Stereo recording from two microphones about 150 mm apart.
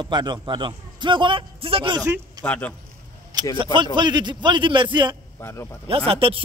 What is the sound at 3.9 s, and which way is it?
A man's voice, 30° right (ahead or behind).